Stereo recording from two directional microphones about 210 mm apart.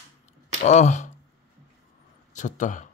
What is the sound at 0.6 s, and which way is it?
Speech, 35° left (ahead or behind).